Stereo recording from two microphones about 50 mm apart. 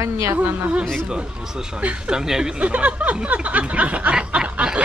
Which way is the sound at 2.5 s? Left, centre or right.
Right.